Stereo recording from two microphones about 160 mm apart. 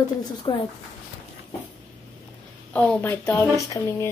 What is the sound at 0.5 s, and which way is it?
Speech, 25° left (ahead or behind).